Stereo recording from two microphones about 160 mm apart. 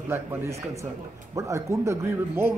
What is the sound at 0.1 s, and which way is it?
A man's voice, 15° right (ahead or behind).